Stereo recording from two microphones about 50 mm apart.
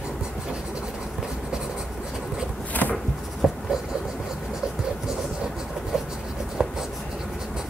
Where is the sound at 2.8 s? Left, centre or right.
Left.